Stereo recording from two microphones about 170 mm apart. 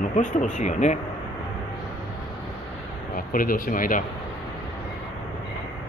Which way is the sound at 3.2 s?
55° left (ahead or behind).